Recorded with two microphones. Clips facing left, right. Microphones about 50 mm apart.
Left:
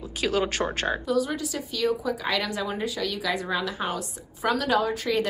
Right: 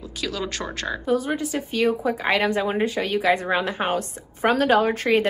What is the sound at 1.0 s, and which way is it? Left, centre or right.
A woman's voice, right.